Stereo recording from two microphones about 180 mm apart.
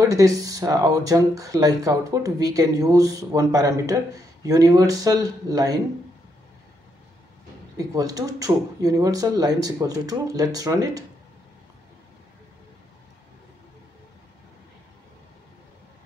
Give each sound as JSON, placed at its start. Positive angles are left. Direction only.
{"t": 0.0, "sound": "speech", "side_deg": -20}
{"t": 7.7, "sound": "speech", "side_deg": -20}